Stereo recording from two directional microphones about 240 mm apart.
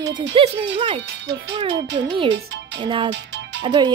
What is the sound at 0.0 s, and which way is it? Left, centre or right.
Speech, centre.